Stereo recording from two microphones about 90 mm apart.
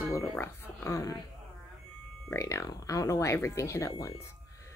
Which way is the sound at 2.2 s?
30° left (ahead or behind).